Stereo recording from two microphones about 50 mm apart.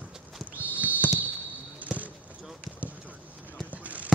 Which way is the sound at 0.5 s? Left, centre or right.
Right.